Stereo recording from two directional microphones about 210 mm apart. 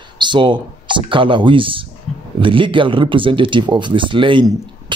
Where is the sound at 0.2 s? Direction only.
20° right (ahead or behind).